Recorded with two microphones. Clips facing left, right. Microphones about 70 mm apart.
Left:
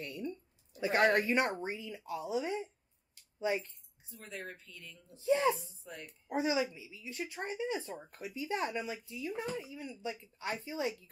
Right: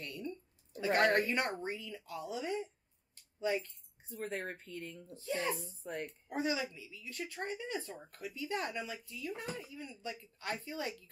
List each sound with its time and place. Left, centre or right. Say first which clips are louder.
0.0 s a sound: left 2 dB; left
1.2 s speech: left 3 dB; centre
4.1 s speech: right 5 dB; right
5.1 s speech: left 8 dB; left
5.6 s speech: right 7 dB; right
6.2 s speech: left 5 dB; centre